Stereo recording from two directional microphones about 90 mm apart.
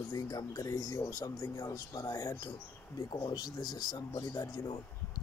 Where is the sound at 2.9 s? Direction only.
55° left (ahead or behind).